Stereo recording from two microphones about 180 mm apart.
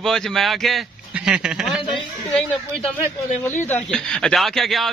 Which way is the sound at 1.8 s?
30° left (ahead or behind).